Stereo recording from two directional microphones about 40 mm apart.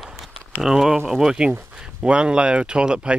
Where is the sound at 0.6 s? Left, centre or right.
Centre.